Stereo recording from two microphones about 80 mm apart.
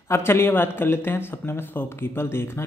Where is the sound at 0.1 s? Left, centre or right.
Left.